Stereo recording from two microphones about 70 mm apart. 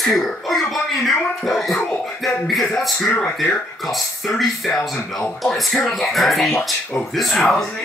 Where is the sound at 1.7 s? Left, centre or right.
Left.